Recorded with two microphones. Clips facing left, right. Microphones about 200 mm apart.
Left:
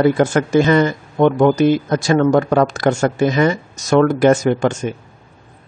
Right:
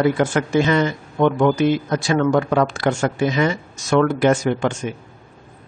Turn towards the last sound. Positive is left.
turn(degrees=40)  # may be behind; listen again after turning